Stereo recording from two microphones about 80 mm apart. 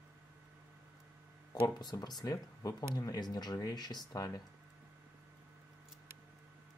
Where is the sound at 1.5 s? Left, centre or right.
Left.